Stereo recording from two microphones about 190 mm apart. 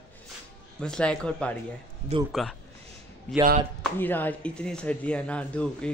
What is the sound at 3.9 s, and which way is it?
Speech, 10° left (ahead or behind).